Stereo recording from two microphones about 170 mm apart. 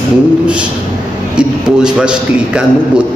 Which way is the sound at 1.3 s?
5° right (ahead or behind).